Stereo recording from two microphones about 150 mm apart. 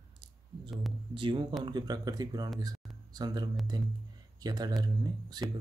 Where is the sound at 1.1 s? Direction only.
35° right (ahead or behind).